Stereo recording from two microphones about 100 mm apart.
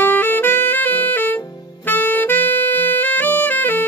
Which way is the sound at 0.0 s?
20° left (ahead or behind).